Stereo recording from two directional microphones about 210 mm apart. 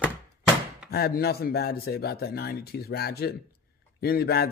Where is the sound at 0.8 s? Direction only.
50° left (ahead or behind).